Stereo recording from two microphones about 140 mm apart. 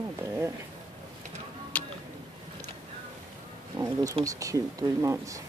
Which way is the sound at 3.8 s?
25° right (ahead or behind).